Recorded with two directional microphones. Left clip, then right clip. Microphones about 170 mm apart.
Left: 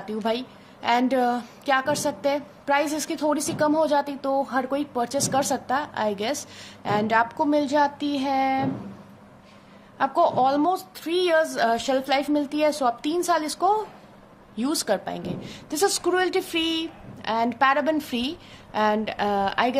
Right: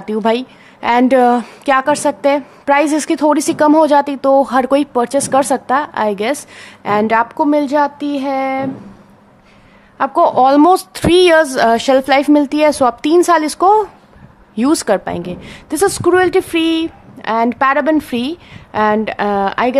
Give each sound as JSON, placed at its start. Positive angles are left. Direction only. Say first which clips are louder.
{"t": 0.0, "sound": "a woman's voice", "louder": "right 11 dB", "side_deg": -45}
{"t": 9.9, "sound": "a woman's voice", "louder": "right 9 dB", "side_deg": -40}